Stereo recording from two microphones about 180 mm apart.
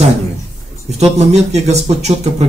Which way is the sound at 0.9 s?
35° right (ahead or behind).